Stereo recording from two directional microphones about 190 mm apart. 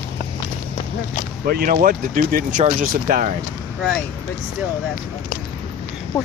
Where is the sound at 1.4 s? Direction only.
50° right (ahead or behind).